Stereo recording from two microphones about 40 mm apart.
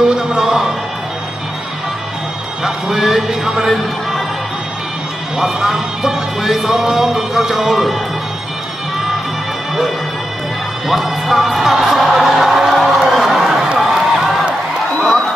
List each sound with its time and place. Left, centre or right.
0.1 s music: centre
2.6 s speech: centre
3.6 s speech: centre
5.4 s speech: centre
10.9 s music: centre
13.7 s a sound: centre